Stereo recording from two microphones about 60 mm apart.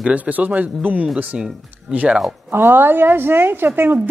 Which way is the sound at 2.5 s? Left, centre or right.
Right.